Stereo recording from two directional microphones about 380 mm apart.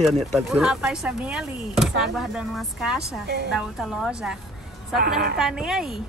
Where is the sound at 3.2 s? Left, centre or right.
Right.